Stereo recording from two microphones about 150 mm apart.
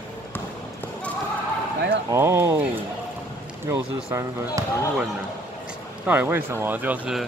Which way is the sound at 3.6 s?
20° right (ahead or behind).